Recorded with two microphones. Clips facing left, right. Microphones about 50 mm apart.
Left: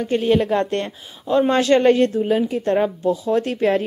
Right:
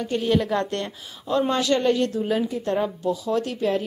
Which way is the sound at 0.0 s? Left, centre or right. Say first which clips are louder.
Left 4 dB; left.